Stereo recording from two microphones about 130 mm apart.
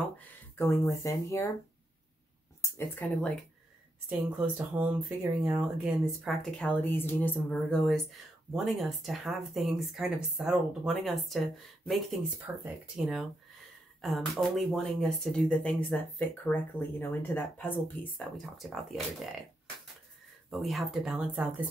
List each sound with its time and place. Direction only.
0.6 s speech: 20° left (ahead or behind)
2.6 s speech: 10° left (ahead or behind)
4.1 s speech: 15° right (ahead or behind)
6.4 s speech: 5° left (ahead or behind)
6.8 s speech: 15° left (ahead or behind)
12.4 s speech: 10° right (ahead or behind); by 18.2 s 15° left (ahead or behind)
18.4 s speech: centre (ahead or behind)
20.4 s speech: centre (ahead or behind)